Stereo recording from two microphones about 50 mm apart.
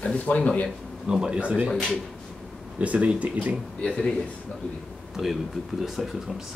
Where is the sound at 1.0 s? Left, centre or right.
Centre.